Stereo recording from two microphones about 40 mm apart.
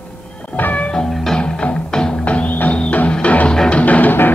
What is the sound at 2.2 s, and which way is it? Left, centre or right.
Music, left.